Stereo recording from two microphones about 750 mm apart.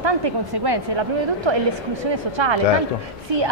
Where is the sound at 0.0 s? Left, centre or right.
Right.